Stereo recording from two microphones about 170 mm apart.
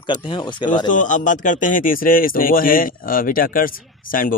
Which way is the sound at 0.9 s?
50° left (ahead or behind).